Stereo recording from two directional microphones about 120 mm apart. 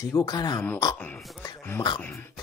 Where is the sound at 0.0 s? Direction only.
30° left (ahead or behind).